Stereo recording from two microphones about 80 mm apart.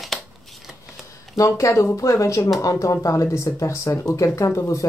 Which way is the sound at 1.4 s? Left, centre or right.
Left.